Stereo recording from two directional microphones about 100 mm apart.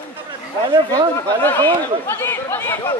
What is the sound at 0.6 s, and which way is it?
Speech, 45° right (ahead or behind).